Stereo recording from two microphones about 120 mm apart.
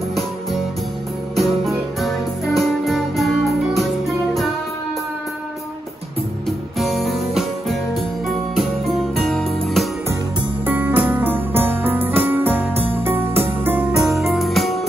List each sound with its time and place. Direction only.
1.3 s music: centre (ahead or behind)
6.8 s music: centre (ahead or behind)
10.6 s music: 15° right (ahead or behind)
13.9 s music: centre (ahead or behind)